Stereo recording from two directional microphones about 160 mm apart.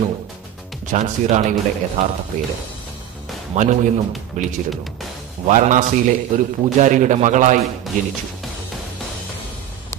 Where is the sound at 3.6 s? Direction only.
50° right (ahead or behind).